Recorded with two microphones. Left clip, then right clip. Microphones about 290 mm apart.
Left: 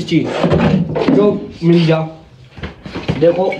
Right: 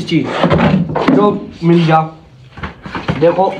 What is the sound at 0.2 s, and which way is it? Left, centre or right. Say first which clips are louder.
Speech: right 3 dB; centre.